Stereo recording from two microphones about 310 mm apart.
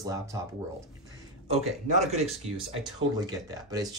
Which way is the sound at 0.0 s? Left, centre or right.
Centre.